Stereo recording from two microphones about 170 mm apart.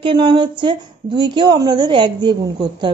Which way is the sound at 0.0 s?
25° right (ahead or behind).